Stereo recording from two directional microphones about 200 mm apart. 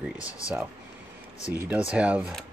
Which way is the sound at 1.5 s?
5° right (ahead or behind).